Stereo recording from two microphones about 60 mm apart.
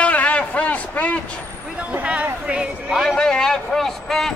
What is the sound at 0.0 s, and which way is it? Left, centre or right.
Vehicle, left.